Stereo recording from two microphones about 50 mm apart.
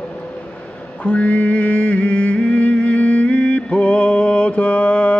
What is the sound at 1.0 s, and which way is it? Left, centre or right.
Music, left.